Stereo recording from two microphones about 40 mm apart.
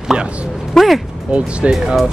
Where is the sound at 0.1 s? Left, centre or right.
Right.